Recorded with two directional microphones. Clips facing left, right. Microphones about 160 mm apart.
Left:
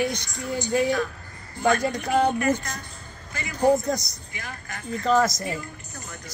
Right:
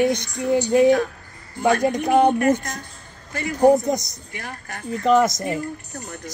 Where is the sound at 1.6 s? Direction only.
60° right (ahead or behind).